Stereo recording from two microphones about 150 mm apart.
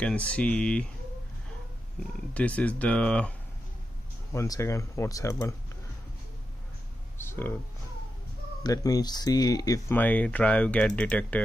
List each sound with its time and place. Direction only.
0.0 s speech: 10° left (ahead or behind)
2.3 s speech: 10° left (ahead or behind)
4.3 s speech: 20° left (ahead or behind)
7.2 s speech: 15° left (ahead or behind)
8.6 s speech: 25° left (ahead or behind)
9.9 s speech: 10° left (ahead or behind)